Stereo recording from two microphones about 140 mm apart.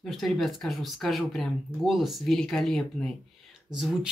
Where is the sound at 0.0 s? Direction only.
Centre (ahead or behind).